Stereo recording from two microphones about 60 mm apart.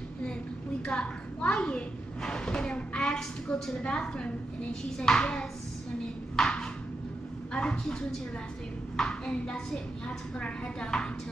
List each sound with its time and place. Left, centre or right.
0.8 s a woman's voice: centre
6.3 s a sound: centre
7.5 s a woman's voice: centre